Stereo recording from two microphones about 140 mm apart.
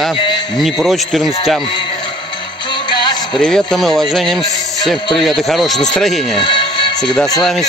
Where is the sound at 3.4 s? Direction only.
5° left (ahead or behind).